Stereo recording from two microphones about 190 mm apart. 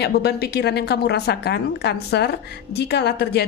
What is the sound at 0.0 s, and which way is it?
A woman's voice, 60° left (ahead or behind).